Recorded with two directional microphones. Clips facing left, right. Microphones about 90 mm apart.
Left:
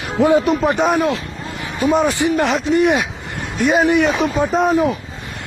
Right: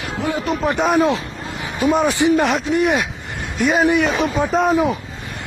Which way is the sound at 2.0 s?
20° right (ahead or behind).